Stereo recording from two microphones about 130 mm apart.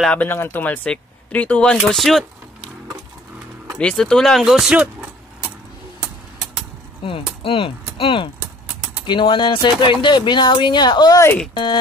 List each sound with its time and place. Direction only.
0.0 s speech: 10° left (ahead or behind)
3.7 s speech: 5° left (ahead or behind)
7.4 s speech: 45° left (ahead or behind)